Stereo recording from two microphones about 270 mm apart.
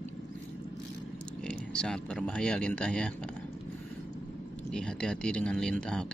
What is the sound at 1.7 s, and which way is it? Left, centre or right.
Speech, centre.